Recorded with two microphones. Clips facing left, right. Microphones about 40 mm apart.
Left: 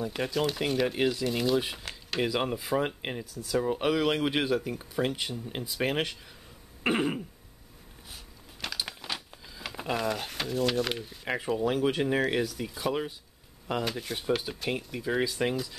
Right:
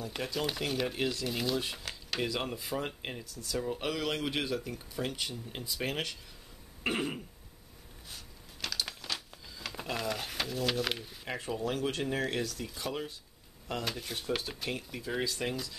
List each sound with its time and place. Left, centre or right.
0.1 s speech: centre; by 3.3 s left
3.3 s speech: centre
6.8 s throat clearing: centre
8.1 s a sound: centre
11.2 s speech: centre